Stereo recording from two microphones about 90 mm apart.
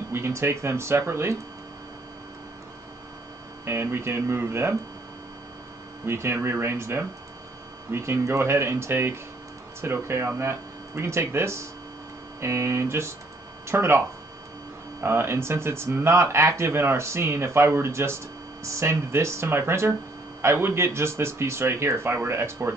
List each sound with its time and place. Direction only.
0.1 s speech: 30° right (ahead or behind)
3.6 s speech: 30° right (ahead or behind)
6.0 s speech: 30° right (ahead or behind)